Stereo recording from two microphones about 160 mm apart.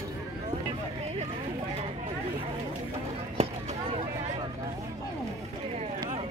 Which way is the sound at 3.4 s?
40° right (ahead or behind).